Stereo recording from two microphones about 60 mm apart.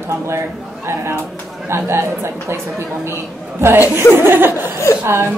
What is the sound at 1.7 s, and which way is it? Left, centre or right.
A woman's voice, right.